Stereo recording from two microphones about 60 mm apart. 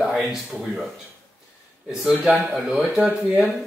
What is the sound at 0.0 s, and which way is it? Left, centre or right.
Speech, centre.